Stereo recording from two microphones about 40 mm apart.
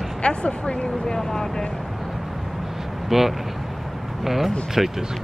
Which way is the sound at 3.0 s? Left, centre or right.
Centre.